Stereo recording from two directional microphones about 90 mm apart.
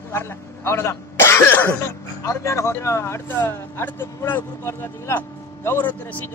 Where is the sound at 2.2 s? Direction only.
35° left (ahead or behind).